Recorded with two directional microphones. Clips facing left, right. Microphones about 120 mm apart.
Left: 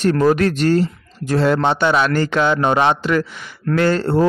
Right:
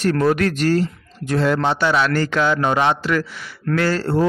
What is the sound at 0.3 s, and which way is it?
A man's voice, 30° left (ahead or behind).